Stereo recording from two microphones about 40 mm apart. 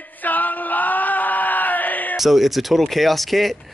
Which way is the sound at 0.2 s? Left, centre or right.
Left.